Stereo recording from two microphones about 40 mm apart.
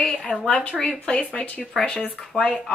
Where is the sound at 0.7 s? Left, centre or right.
Left.